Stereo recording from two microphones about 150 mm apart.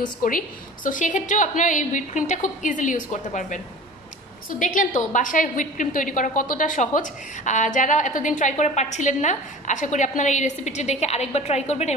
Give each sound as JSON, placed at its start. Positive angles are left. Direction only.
{"t": 0.0, "sound": "a woman's voice", "side_deg": 65}
{"t": 4.5, "sound": "a woman's voice", "side_deg": 65}